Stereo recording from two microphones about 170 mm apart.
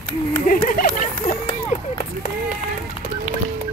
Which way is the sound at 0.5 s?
55° left (ahead or behind).